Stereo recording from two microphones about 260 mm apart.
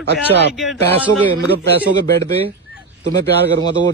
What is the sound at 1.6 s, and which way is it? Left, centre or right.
Speech, right.